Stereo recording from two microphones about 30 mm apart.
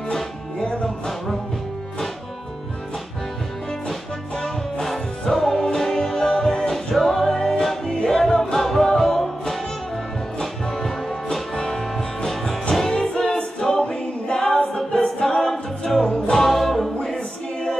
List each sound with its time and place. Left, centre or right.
0.1 s music: centre
5.2 s music: centre
6.7 s music: centre
10.4 s music: centre
13.1 s a capella: left
15.2 s a capella: centre
16.0 s music: left
16.3 s music: centre